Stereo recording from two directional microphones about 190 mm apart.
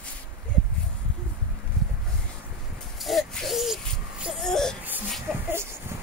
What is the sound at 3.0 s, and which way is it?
Baby cry, centre (ahead or behind).